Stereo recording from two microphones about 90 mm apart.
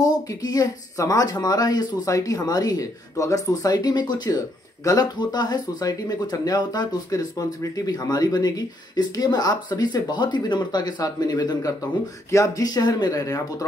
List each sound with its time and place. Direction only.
0.0 s speech: 45° left (ahead or behind)